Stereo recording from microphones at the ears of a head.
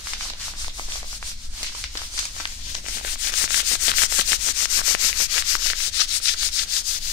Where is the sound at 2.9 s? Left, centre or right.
Left.